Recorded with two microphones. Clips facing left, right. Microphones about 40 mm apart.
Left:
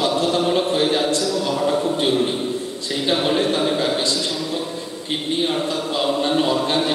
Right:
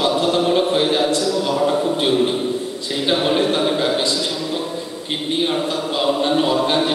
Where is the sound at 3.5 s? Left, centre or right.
Centre.